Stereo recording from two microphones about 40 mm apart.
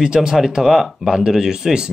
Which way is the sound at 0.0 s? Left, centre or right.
Centre.